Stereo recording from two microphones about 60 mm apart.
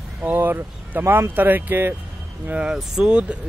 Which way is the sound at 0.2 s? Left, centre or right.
Right.